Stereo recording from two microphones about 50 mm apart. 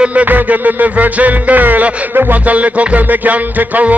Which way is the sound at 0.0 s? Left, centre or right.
Right.